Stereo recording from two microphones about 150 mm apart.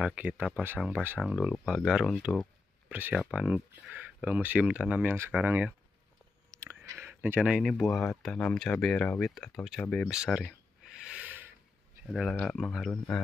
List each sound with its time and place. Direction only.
0.0 s speech: 10° right (ahead or behind)
2.9 s speech: 10° right (ahead or behind)
6.5 s chewing: 20° right (ahead or behind)
6.8 s a sound: 15° right (ahead or behind)
7.7 s speech: 5° left (ahead or behind)
10.1 s a sound: 5° right (ahead or behind)
12.1 s speech: centre (ahead or behind)